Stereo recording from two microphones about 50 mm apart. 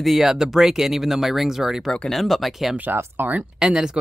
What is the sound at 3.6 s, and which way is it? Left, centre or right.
Speech, centre.